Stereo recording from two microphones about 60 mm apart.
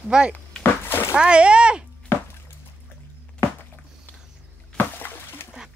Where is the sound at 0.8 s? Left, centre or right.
Left.